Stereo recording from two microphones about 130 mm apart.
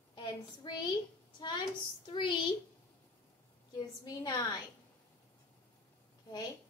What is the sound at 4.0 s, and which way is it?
Speech, 30° left (ahead or behind).